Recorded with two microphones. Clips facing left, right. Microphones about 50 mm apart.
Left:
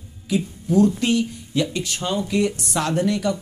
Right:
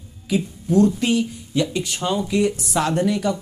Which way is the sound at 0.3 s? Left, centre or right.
Centre.